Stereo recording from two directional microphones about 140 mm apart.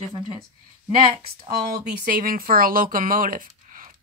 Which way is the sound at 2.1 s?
90° right.